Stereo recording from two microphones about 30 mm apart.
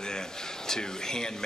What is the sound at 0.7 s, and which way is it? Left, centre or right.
Speech, left.